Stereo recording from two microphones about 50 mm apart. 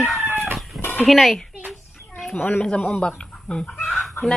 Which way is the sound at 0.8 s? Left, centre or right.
Left.